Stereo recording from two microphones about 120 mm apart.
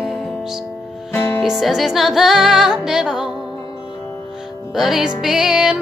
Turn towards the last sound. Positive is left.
turn(degrees=-5)  # may be behind; listen again after turning